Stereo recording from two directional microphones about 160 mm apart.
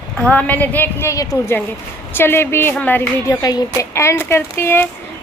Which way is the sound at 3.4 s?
25° left (ahead or behind).